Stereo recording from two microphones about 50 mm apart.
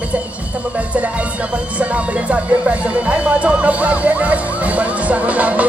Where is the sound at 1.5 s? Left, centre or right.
Right.